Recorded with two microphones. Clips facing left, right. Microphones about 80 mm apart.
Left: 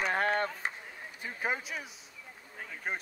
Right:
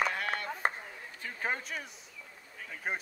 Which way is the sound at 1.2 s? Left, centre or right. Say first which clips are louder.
Left 1 dB; centre.